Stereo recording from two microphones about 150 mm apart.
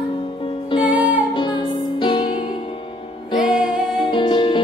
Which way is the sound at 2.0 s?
35° left (ahead or behind).